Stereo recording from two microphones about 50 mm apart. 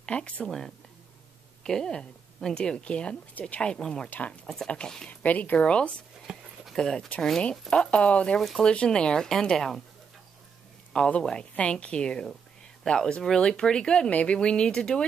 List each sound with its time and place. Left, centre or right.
0.0 s a woman's voice: left
1.6 s a woman's voice: centre
3.7 s speech: centre
5.2 s speech: left
6.3 s a sound: centre
6.7 s speech: centre
7.7 s speech: centre
8.4 s speech: centre
8.6 s speech: centre
10.9 s speech: left